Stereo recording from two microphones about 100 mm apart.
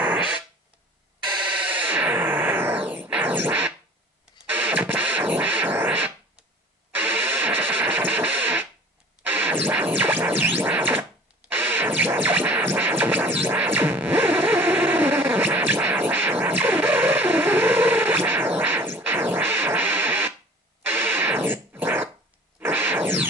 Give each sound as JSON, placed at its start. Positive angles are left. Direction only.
{"t": 0.0, "sound": "fart", "side_deg": -15}
{"t": 1.3, "sound": "music", "side_deg": -15}
{"t": 22.6, "sound": "a sound", "side_deg": -20}